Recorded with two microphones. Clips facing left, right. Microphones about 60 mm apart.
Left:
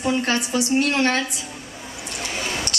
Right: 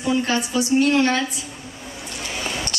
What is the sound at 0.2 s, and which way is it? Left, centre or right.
A woman's voice, left.